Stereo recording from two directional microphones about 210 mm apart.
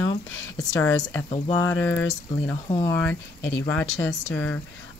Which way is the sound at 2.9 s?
10° left (ahead or behind).